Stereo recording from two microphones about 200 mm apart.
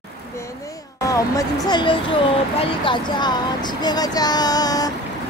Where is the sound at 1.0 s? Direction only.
15° left (ahead or behind).